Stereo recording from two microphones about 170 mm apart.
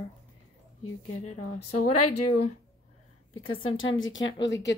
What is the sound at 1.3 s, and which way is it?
Speech, 45° left (ahead or behind).